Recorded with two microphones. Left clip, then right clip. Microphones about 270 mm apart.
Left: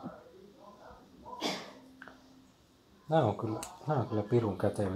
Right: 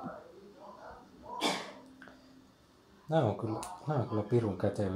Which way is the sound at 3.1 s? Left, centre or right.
Centre.